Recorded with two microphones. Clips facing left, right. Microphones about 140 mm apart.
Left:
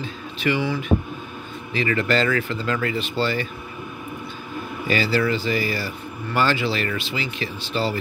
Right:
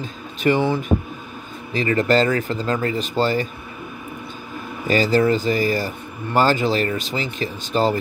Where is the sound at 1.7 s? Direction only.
40° right (ahead or behind).